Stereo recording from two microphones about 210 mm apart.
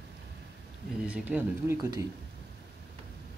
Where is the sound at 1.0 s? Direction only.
5° right (ahead or behind).